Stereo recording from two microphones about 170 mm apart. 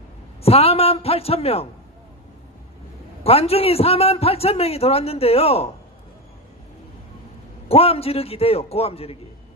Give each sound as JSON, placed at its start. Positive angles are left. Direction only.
{"t": 0.4, "sound": "a man's voice", "side_deg": 35}
{"t": 3.3, "sound": "a man's voice", "side_deg": 35}
{"t": 7.6, "sound": "a man's voice", "side_deg": 35}